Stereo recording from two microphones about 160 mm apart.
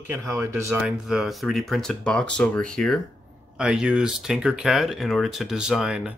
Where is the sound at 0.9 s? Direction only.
Centre (ahead or behind).